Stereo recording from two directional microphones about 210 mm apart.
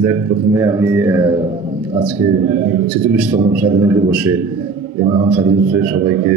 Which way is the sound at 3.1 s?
5° right (ahead or behind).